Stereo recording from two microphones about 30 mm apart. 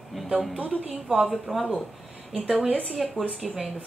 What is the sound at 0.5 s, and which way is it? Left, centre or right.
Speech, right.